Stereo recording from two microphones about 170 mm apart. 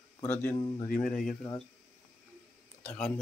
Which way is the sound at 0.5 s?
25° left (ahead or behind).